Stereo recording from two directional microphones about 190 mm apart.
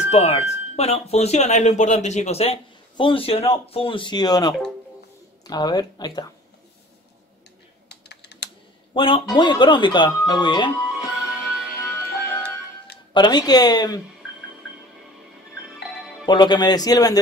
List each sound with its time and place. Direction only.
0.1 s speech: 35° left (ahead or behind)
7.9 s computer keyboard: 60° left (ahead or behind)
8.9 s speech: 25° left (ahead or behind)
10.9 s music: centre (ahead or behind)
11.8 s music: 10° left (ahead or behind)
13.1 s speech: 25° left (ahead or behind)
16.3 s speech: 25° left (ahead or behind)